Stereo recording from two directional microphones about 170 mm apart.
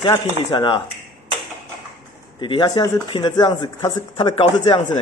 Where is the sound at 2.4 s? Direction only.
30° left (ahead or behind).